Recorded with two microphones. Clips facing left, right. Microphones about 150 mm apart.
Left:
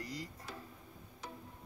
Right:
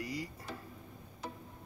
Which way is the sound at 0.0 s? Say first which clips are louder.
Right 4 dB; 10° right (ahead or behind).